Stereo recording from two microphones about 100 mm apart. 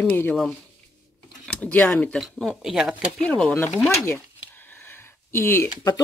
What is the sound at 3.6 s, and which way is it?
Speech, 20° left (ahead or behind).